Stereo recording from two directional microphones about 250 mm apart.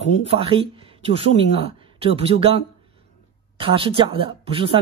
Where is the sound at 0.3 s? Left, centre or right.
Right.